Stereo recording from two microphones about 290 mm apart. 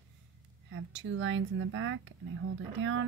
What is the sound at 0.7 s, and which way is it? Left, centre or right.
Speech, right.